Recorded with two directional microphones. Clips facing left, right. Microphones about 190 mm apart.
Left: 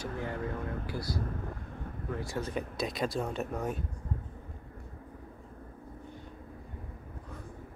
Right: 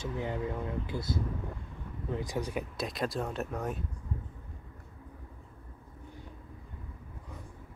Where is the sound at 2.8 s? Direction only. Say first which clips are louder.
Left 2 dB; centre (ahead or behind).